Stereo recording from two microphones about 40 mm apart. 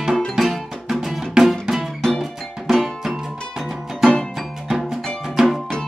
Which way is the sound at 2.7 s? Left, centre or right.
Centre.